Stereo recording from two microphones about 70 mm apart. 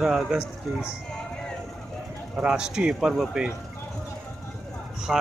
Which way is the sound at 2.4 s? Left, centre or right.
Centre.